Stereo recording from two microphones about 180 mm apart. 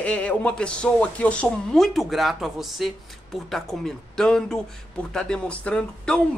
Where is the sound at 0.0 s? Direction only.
5° left (ahead or behind).